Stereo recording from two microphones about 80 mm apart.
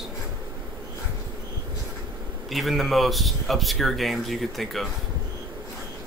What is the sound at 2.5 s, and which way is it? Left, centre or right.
Speech, centre.